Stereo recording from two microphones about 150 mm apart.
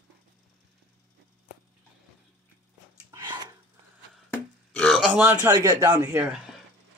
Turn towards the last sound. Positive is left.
turn(degrees=-20)  # may be behind; listen again after turning